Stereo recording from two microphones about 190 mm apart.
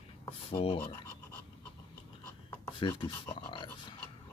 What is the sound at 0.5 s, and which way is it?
Speech, 25° left (ahead or behind).